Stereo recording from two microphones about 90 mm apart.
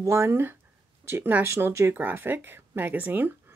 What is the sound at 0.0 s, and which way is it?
Speech, 30° right (ahead or behind).